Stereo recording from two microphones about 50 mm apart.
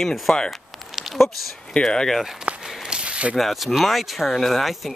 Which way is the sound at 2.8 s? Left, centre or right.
Centre.